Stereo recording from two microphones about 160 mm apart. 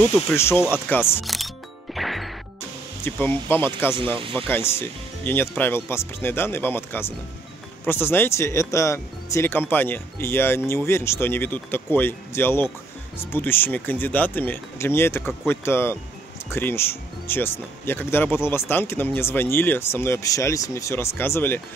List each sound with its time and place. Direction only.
0.3 s speech: 15° left (ahead or behind)
1.2 s speech: centre (ahead or behind)
2.0 s music: centre (ahead or behind)
3.0 s speech: 10° left (ahead or behind)
3.9 s speech: 30° right (ahead or behind)
4.5 s speech: 15° left (ahead or behind)